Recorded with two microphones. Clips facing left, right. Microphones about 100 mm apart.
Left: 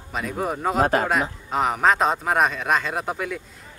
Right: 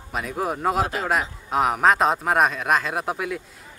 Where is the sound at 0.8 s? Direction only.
50° left (ahead or behind).